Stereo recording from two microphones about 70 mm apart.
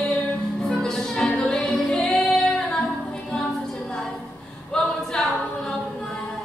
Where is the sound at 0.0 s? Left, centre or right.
Centre.